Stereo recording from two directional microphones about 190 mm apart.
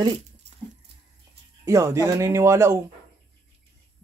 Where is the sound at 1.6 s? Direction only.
15° right (ahead or behind).